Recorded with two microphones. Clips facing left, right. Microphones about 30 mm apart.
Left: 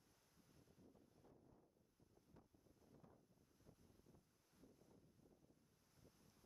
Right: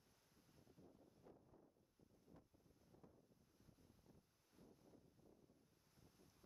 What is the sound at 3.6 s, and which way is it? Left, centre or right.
Wind noise, centre.